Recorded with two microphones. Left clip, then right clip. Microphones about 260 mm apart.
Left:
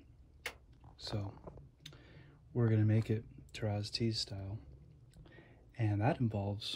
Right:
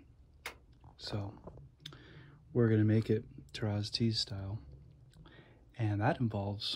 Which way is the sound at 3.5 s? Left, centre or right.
Centre.